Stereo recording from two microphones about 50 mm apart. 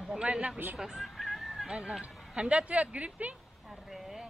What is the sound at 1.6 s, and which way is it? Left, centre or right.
Speech, centre.